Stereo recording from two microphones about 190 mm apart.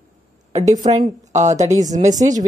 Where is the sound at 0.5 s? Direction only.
35° right (ahead or behind).